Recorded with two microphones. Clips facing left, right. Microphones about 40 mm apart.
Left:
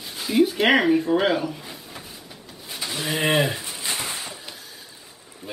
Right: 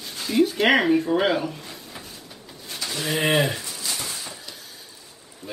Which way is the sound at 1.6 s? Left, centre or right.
Centre.